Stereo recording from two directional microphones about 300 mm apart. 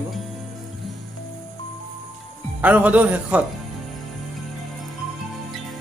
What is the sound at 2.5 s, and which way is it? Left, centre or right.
Speech, centre.